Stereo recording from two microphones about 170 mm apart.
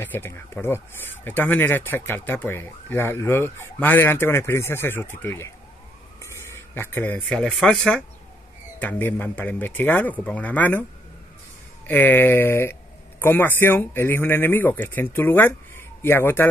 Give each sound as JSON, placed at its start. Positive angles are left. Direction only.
{"t": 0.0, "sound": "speech", "side_deg": 15}
{"t": 11.9, "sound": "speech", "side_deg": 10}